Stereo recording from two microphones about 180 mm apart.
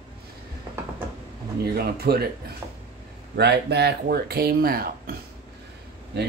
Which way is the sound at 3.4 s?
65° right (ahead or behind).